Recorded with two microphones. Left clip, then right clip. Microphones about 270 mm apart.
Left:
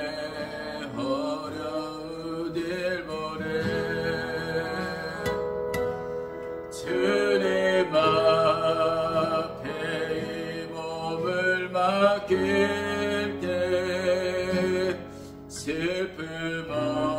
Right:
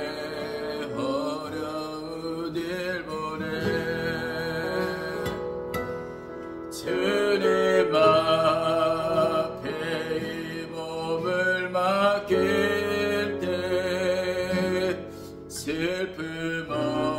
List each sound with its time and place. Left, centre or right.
2.5 s mantra: centre
7.1 s music: centre
11.2 s music: centre